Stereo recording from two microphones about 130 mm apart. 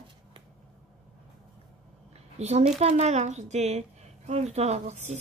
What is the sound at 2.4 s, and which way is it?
A woman's voice, 55° right (ahead or behind).